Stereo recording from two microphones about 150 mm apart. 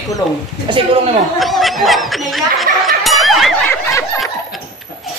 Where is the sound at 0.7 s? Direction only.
30° right (ahead or behind).